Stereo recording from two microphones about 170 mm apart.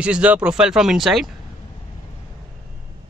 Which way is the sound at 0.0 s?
5° right (ahead or behind).